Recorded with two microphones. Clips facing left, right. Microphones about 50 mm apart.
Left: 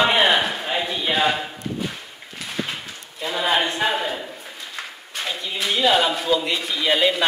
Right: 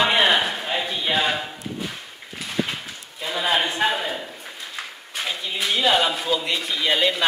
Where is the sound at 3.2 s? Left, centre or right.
Centre.